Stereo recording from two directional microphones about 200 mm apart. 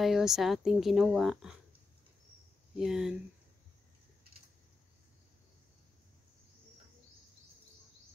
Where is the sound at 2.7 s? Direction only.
5° right (ahead or behind).